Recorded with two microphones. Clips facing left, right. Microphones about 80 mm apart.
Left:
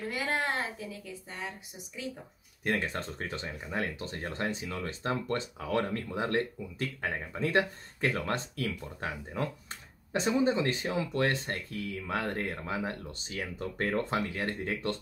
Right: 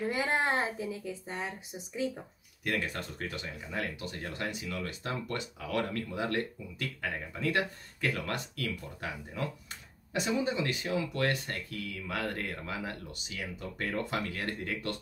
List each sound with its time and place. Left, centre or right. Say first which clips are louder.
0.1 s a woman's voice: right 1 dB; right
2.6 s speech: left 2 dB; left
14.1 s speech: left 3 dB; left